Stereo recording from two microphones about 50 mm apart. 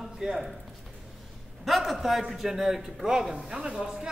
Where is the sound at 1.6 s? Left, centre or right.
Centre.